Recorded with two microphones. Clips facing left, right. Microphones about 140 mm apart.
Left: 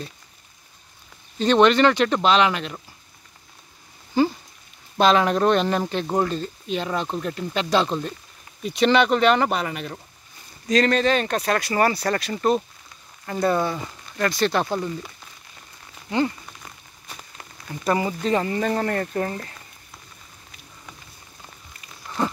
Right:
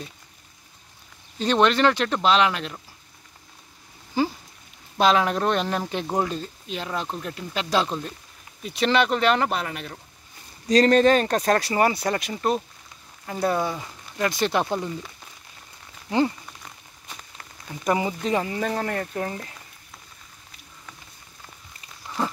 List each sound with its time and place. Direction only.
1.4 s speech: 5° right (ahead or behind)
4.2 s speech: 5° right (ahead or behind)
10.7 s speech: 40° right (ahead or behind)
11.7 s speech: 20° right (ahead or behind)
12.4 s speech: 5° right (ahead or behind)
16.1 s speech: 25° right (ahead or behind)
17.1 s a sound: 15° left (ahead or behind)
17.8 s speech: 15° right (ahead or behind)
22.2 s a sound: centre (ahead or behind)